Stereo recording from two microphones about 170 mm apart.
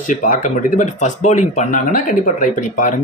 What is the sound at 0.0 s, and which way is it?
A man's voice, 50° left (ahead or behind).